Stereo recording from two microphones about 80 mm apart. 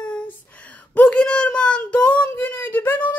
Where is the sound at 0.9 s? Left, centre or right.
Centre.